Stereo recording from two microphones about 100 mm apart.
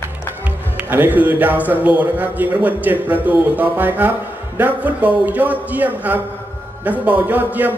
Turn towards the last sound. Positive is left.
turn(degrees=-20)  # may be behind; listen again after turning